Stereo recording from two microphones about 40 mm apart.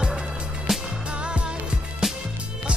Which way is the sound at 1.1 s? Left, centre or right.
Right.